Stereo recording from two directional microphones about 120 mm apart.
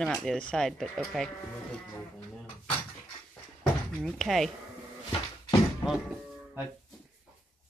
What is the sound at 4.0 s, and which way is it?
Speech, 5° left (ahead or behind).